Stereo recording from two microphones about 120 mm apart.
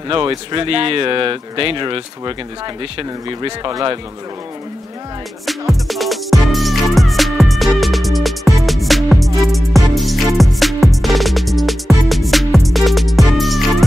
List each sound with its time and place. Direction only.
0.6 s speech: 50° right (ahead or behind)
5.4 s music: centre (ahead or behind)